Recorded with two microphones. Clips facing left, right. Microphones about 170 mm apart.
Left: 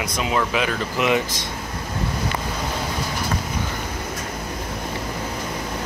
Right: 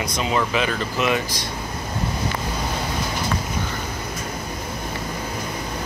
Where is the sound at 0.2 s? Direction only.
5° left (ahead or behind).